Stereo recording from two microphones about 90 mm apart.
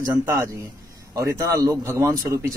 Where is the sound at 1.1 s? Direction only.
35° right (ahead or behind).